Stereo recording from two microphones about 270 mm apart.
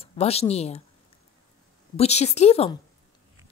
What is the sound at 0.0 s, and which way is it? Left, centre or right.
Speech, left.